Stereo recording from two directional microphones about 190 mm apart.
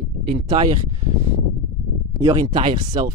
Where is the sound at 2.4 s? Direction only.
25° right (ahead or behind).